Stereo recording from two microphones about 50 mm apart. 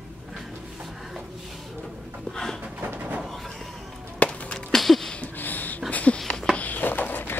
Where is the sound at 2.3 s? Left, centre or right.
Centre.